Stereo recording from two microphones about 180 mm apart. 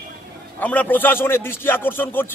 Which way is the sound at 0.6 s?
10° left (ahead or behind).